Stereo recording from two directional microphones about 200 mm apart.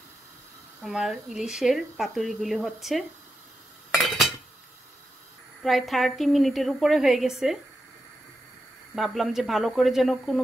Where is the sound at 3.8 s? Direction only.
Centre (ahead or behind).